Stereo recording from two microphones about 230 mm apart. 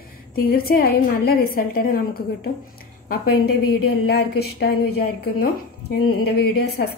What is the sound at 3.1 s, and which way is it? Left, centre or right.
A woman's voice, left.